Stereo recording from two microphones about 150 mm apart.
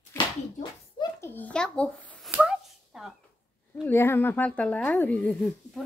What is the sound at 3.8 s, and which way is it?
A woman's voice, 15° left (ahead or behind).